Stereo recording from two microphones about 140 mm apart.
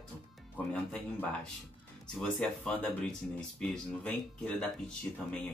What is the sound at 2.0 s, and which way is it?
Speech, 5° left (ahead or behind).